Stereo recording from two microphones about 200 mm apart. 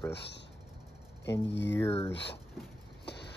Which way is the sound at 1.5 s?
60° left (ahead or behind).